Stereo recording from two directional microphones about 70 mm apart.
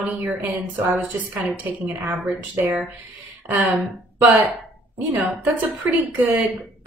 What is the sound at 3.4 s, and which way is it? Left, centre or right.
Speech, right.